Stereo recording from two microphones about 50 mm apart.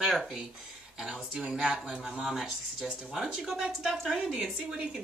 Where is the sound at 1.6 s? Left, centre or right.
Centre.